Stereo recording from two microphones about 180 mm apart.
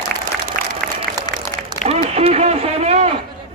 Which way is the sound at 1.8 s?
35° right (ahead or behind).